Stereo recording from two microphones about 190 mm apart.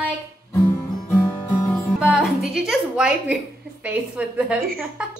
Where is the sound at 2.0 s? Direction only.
5° right (ahead or behind).